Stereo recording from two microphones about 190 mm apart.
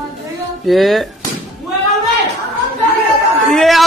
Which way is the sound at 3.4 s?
Centre (ahead or behind).